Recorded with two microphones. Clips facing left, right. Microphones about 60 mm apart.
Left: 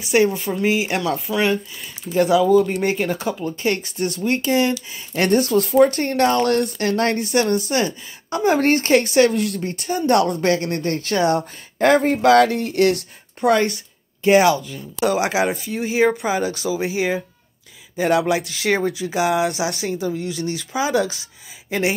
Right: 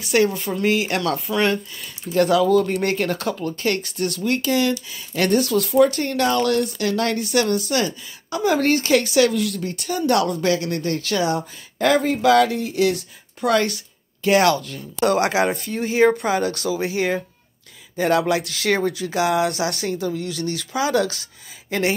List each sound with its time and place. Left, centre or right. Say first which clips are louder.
0.0 s speech: left 1 dB; left
13.5 s speech: left 2 dB; left